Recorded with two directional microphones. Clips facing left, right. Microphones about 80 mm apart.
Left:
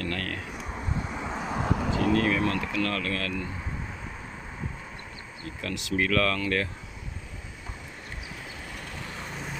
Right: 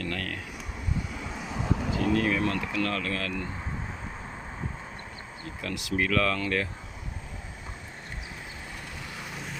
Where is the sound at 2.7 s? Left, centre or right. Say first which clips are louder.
Left 1 dB; right.